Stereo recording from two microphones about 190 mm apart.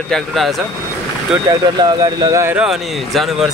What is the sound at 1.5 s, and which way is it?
Speech, 20° right (ahead or behind).